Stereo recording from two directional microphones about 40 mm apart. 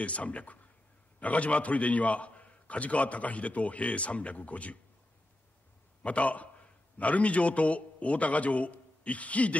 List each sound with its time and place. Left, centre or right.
0.0 s a man's voice: left
6.0 s a man's voice: left